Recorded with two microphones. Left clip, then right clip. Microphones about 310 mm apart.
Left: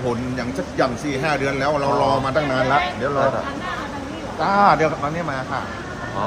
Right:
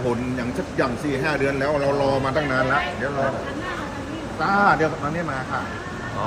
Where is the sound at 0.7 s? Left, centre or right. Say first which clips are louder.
Left 2 dB; centre.